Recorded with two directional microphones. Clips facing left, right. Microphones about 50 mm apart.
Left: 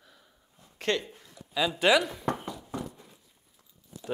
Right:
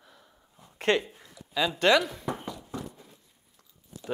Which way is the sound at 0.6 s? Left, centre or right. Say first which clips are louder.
Right 4 dB; centre.